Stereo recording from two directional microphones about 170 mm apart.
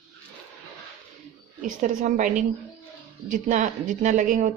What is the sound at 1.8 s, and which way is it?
Speech, 50° right (ahead or behind).